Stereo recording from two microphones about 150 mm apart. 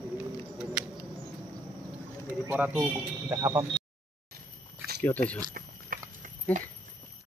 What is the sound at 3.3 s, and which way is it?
Speech, 25° right (ahead or behind).